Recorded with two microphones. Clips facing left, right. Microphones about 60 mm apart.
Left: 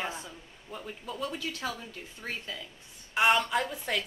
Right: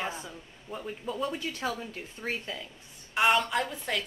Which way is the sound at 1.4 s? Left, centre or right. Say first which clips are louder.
Right 2 dB; right.